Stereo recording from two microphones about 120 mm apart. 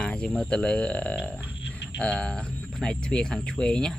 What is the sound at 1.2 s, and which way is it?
Frog, 10° right (ahead or behind).